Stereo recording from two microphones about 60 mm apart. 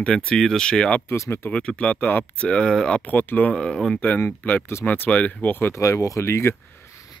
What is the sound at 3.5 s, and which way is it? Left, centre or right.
Speech, centre.